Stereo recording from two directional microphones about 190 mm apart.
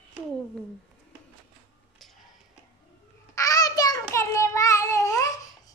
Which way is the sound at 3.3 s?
20° left (ahead or behind).